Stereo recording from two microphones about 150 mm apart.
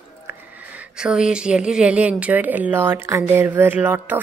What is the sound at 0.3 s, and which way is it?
Speech, 10° right (ahead or behind).